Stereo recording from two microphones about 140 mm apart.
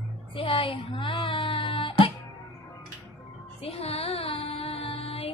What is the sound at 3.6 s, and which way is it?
Music, 45° left (ahead or behind).